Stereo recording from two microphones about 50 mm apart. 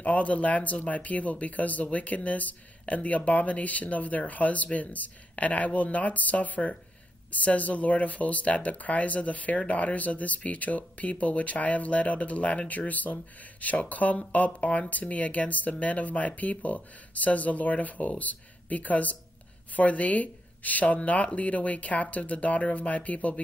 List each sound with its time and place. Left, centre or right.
0.0 s speech: left